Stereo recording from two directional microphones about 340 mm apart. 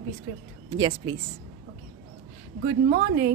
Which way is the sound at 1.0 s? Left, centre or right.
Centre.